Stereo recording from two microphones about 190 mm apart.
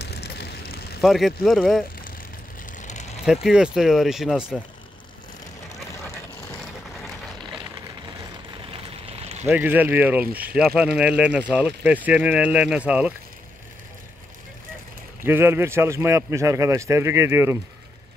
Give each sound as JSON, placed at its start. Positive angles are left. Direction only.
{"t": 0.0, "sound": "vehicle", "side_deg": 60}
{"t": 1.0, "sound": "speech", "side_deg": 0}
{"t": 2.8, "sound": "vehicle", "side_deg": 40}
{"t": 3.3, "sound": "speech", "side_deg": -5}
{"t": 9.1, "sound": "a sound", "side_deg": -35}
{"t": 9.5, "sound": "speech", "side_deg": -10}
{"t": 15.2, "sound": "speech", "side_deg": -10}